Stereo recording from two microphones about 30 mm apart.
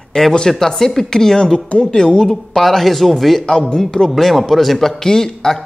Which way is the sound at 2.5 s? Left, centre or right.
Centre.